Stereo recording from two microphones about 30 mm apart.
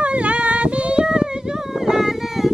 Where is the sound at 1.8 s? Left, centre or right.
Centre.